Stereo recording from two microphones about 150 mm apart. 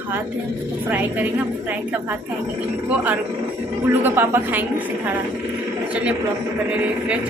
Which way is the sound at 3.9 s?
15° right (ahead or behind).